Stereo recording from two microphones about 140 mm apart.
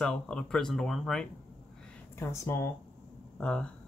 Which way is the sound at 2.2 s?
20° left (ahead or behind).